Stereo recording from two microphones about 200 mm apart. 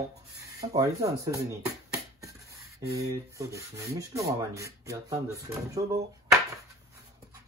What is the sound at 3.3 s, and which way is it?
Speech, 15° right (ahead or behind).